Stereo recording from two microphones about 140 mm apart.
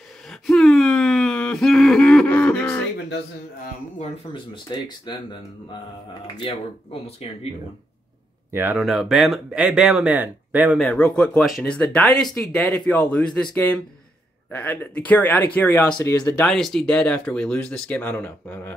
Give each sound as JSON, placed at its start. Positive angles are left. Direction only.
{"t": 0.3, "sound": "a sound", "side_deg": 5}
{"t": 4.3, "sound": "speech", "side_deg": 30}
{"t": 6.3, "sound": "speech", "side_deg": 40}
{"t": 8.5, "sound": "speech", "side_deg": -15}
{"t": 8.7, "sound": "speech", "side_deg": 0}
{"t": 10.8, "sound": "speech", "side_deg": 10}
{"t": 11.3, "sound": "speech", "side_deg": 0}
{"t": 16.4, "sound": "speech", "side_deg": 5}